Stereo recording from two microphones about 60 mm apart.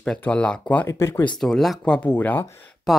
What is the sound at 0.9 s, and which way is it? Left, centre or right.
Speech, left.